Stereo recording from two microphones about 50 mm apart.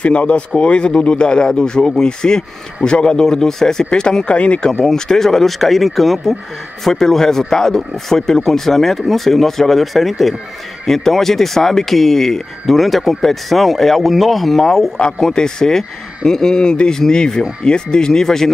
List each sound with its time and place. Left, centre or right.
0.0 s speech: left